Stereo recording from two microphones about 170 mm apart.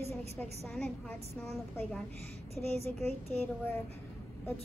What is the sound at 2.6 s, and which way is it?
Speech, 40° right (ahead or behind).